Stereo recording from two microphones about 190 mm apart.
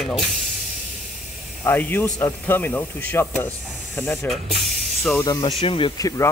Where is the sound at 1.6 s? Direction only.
10° left (ahead or behind).